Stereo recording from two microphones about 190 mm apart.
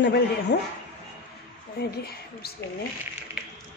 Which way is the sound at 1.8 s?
55° left (ahead or behind).